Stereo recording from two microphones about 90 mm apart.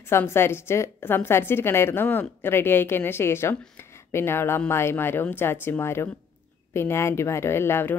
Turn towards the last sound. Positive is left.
turn(degrees=25)  # may be behind; listen again after turning